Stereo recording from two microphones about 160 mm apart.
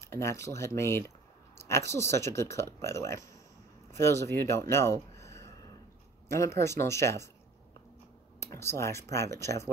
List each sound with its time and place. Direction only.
0.0 s speech: 20° left (ahead or behind)
8.4 s speech: 15° left (ahead or behind)